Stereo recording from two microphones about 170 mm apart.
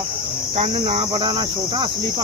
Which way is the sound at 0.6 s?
35° right (ahead or behind).